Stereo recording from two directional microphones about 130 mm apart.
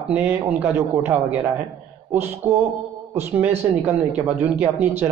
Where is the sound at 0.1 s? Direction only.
15° right (ahead or behind).